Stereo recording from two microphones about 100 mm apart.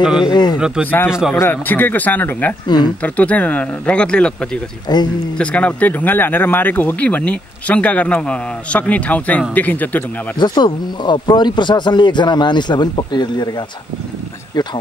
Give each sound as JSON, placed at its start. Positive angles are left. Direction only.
{"t": 0.2, "sound": "a sound", "side_deg": 45}
{"t": 0.6, "sound": "a man's voice", "side_deg": -10}
{"t": 1.3, "sound": "speech", "side_deg": 20}
{"t": 2.6, "sound": "speech", "side_deg": 45}
{"t": 3.0, "sound": "speech", "side_deg": 15}
{"t": 4.9, "sound": "speech", "side_deg": 45}
{"t": 5.4, "sound": "speech", "side_deg": 15}
{"t": 10.4, "sound": "speech", "side_deg": 45}